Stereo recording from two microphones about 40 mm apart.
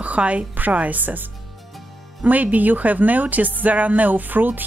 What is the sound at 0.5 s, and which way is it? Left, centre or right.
Speech, right.